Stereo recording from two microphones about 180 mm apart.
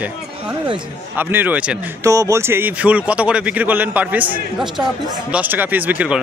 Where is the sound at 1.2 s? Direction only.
10° right (ahead or behind).